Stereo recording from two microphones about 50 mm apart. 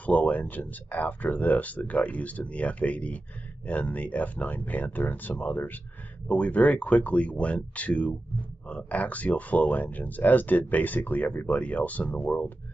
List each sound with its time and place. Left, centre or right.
0.0 s speech: left